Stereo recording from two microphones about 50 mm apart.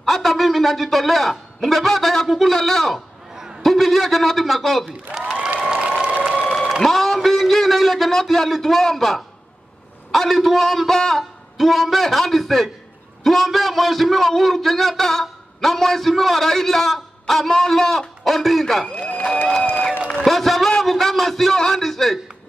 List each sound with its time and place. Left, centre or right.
0.0 s a man's voice: centre
5.6 s applause: centre
6.8 s a man's voice: centre
18.9 s speech: left
20.2 s a man's voice: centre